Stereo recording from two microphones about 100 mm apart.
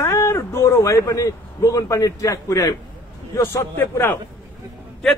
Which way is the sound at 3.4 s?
25° left (ahead or behind).